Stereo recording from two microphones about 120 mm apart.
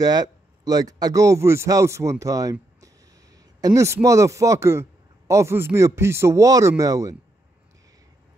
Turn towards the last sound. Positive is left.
turn(degrees=-30)  # may be behind; listen again after turning